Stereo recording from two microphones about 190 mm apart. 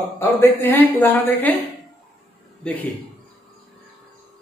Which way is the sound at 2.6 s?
10° left (ahead or behind).